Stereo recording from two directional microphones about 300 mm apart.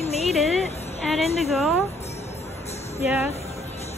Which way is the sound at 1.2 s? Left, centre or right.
Centre.